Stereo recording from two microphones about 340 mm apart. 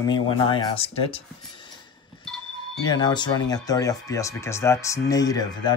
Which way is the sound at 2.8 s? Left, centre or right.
Centre.